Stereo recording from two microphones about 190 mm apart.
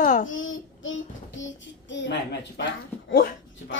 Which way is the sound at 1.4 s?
70° left (ahead or behind).